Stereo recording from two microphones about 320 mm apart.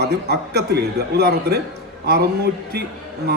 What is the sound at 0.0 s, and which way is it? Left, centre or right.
A man's voice, right.